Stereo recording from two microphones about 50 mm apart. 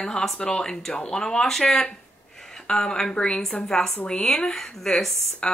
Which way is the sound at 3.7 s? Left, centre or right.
Centre.